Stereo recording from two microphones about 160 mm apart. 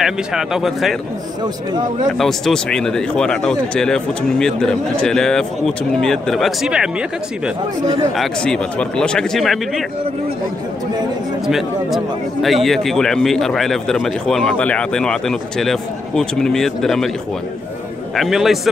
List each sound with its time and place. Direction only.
0.0 s speech: 5° right (ahead or behind)
2.1 s speech: centre (ahead or behind)
7.8 s speech: 25° right (ahead or behind)
8.2 s speech: 5° left (ahead or behind)
11.4 s speech: centre (ahead or behind)
18.1 s speech: centre (ahead or behind)